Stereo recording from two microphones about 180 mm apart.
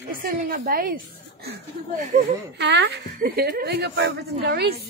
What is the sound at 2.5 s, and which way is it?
Speech, 80° right.